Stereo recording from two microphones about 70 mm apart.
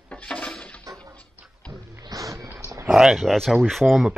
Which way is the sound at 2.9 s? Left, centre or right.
Centre.